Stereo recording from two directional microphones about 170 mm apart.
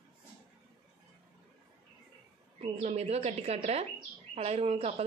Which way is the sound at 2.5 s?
40° right (ahead or behind).